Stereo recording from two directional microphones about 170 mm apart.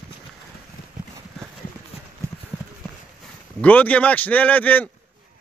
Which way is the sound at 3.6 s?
10° left (ahead or behind).